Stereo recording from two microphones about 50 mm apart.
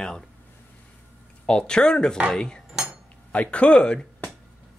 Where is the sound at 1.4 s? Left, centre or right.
Centre.